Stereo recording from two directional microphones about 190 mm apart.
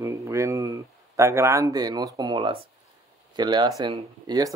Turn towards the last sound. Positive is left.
turn(degrees=-20)  # may be behind; listen again after turning